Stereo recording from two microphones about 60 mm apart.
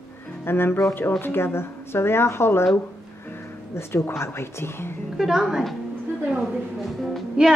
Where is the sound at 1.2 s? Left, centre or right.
Left.